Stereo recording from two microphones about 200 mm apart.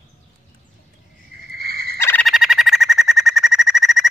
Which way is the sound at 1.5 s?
50° right (ahead or behind).